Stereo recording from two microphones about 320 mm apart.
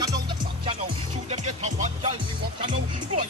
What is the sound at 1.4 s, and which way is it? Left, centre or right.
Music, right.